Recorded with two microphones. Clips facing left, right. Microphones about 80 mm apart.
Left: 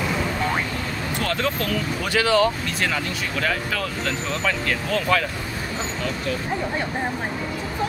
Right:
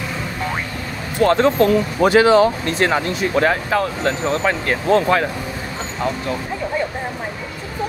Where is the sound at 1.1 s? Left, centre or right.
Right.